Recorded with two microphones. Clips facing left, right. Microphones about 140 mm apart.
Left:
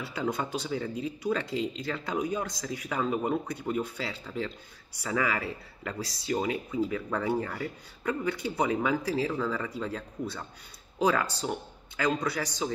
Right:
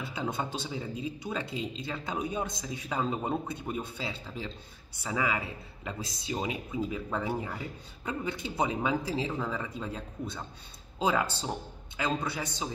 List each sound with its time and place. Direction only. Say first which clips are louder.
0.0 s speech: left 2 dB; 25° right (ahead or behind)